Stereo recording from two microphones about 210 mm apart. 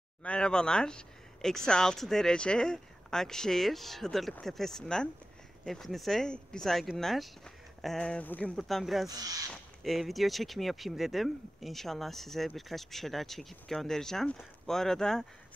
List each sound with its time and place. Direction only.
0.2 s speech: 5° left (ahead or behind)
9.1 s speech: 20° right (ahead or behind)
9.5 s speech: centre (ahead or behind)